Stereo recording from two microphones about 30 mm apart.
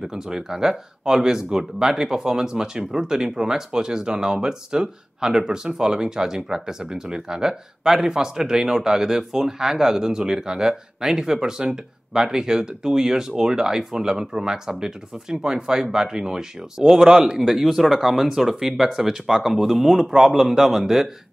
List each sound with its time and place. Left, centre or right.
0.0 s speech: centre
17.4 s speech: centre
20.1 s speech: right